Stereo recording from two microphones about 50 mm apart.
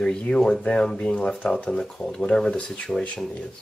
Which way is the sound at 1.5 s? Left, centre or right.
Centre.